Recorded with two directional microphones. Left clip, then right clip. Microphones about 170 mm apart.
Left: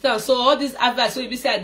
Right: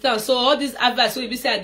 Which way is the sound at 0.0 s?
Centre (ahead or behind).